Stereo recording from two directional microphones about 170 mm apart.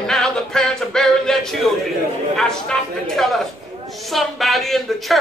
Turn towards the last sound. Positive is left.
turn(degrees=0)  # may be behind; listen again after turning